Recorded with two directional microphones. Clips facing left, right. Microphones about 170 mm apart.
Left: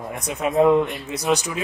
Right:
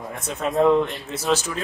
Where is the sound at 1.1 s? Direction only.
15° left (ahead or behind).